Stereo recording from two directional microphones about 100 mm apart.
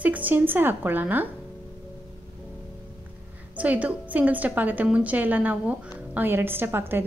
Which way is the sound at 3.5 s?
15° right (ahead or behind).